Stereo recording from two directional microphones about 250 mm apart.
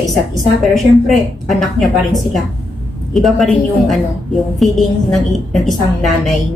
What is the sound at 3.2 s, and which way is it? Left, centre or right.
A woman's voice, centre.